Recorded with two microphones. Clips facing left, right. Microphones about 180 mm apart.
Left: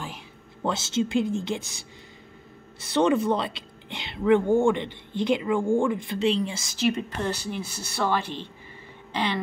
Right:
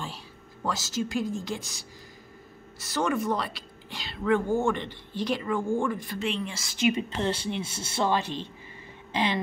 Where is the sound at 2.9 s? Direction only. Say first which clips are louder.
Left 5 dB; 25° left (ahead or behind).